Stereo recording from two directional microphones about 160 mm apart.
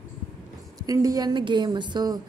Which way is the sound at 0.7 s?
20° right (ahead or behind).